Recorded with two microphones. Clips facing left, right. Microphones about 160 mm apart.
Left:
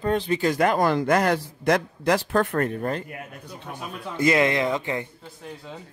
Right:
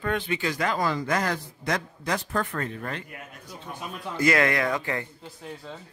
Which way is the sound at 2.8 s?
40° left (ahead or behind).